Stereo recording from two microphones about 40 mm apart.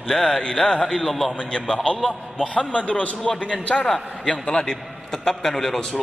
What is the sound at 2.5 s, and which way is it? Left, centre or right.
Speech, left.